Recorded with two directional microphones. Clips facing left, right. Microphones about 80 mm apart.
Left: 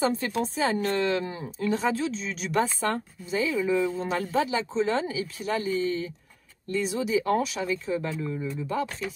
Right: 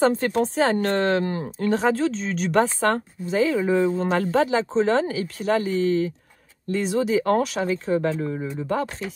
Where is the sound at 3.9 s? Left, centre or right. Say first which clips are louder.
Right 5 dB; right.